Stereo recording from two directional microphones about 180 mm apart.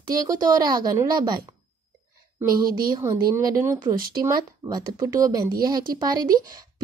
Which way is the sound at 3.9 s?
55° right (ahead or behind).